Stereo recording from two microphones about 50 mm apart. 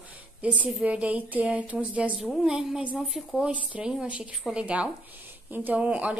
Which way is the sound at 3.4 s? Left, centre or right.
Right.